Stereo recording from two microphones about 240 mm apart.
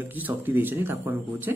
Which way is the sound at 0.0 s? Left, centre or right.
Centre.